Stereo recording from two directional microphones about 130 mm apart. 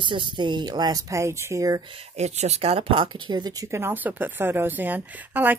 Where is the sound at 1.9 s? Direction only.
55° right (ahead or behind).